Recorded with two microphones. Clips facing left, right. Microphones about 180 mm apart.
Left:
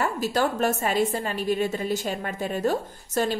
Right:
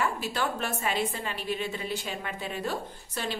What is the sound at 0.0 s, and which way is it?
A woman's voice, 40° left (ahead or behind).